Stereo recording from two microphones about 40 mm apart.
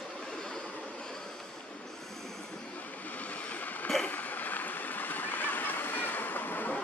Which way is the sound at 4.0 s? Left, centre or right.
Left.